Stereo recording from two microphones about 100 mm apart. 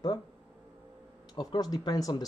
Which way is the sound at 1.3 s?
45° left (ahead or behind).